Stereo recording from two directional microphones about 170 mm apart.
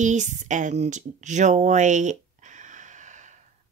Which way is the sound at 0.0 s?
45° right (ahead or behind).